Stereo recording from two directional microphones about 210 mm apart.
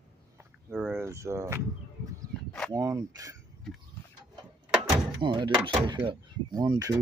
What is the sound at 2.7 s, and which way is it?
Speech, 20° right (ahead or behind).